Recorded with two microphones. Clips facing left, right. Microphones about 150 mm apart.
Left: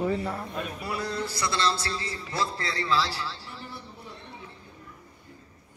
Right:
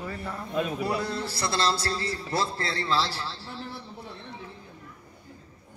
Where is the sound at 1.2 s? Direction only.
30° right (ahead or behind).